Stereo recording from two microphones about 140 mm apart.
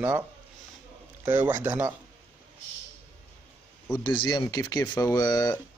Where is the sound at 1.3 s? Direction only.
15° right (ahead or behind).